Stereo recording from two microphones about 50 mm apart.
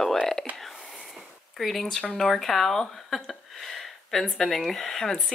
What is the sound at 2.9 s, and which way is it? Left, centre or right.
Speech, centre.